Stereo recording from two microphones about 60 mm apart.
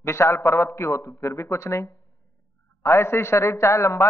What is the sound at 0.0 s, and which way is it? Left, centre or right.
A man's voice, left.